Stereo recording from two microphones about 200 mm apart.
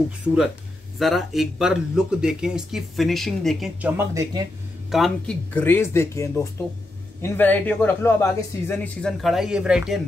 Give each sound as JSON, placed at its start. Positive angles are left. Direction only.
{"t": 0.9, "sound": "speech", "side_deg": 0}
{"t": 3.9, "sound": "speech", "side_deg": -15}
{"t": 4.9, "sound": "speech", "side_deg": 0}